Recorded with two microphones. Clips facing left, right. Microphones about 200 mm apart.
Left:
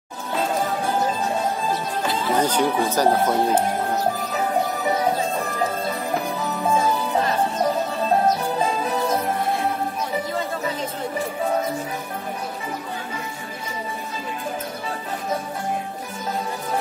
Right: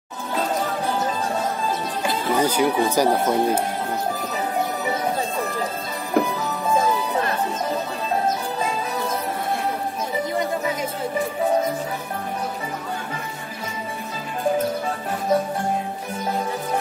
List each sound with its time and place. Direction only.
2.3 s speech: 10° right (ahead or behind)
6.2 s music: 55° right (ahead or behind)